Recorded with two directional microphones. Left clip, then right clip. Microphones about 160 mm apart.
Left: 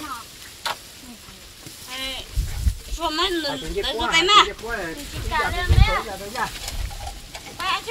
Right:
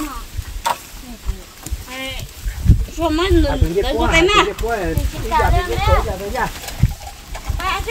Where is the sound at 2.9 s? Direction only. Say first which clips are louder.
Right 6 dB; 65° right (ahead or behind).